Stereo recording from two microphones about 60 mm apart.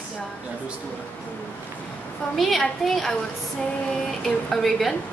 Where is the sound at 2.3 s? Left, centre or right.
Centre.